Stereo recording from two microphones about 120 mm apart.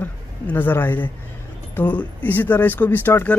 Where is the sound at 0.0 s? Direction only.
15° left (ahead or behind).